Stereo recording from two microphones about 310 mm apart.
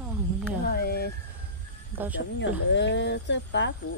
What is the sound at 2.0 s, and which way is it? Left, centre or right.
Speech, centre.